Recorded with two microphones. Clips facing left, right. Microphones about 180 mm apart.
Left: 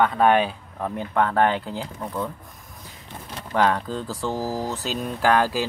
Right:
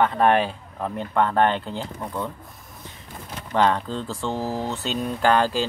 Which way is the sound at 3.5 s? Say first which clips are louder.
Right 1 dB; 5° left (ahead or behind).